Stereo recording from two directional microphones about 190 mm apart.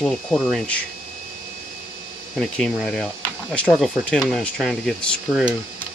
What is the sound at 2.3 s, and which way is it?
Speech, centre (ahead or behind).